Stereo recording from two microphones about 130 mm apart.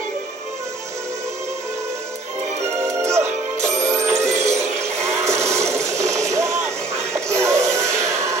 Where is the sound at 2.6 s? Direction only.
55° right (ahead or behind).